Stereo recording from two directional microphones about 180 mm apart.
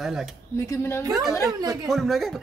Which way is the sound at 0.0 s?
Centre (ahead or behind).